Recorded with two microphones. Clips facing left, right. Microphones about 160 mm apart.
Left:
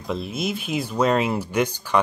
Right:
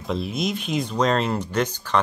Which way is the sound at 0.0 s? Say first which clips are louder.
Right 1 dB; centre (ahead or behind).